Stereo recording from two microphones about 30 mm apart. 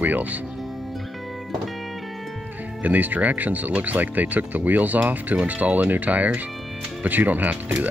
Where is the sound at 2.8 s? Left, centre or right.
Right.